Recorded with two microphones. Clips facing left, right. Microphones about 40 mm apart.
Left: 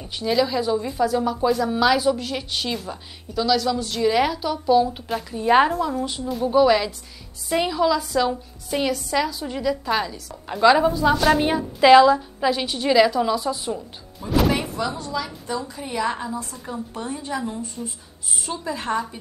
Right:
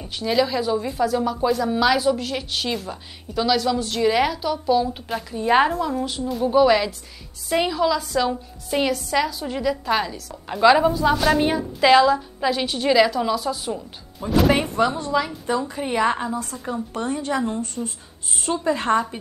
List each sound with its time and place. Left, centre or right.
0.0 s a woman's voice: centre
14.8 s a woman's voice: right
16.9 s a woman's voice: right
17.8 s a woman's voice: centre
18.4 s a woman's voice: right